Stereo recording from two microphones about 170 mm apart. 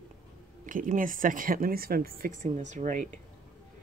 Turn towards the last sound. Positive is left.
turn(degrees=-45)  # may be behind; listen again after turning